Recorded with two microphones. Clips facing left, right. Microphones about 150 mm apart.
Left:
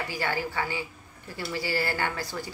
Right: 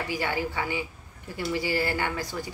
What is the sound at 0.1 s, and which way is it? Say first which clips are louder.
A woman's voice: right 2 dB; 15° right (ahead or behind).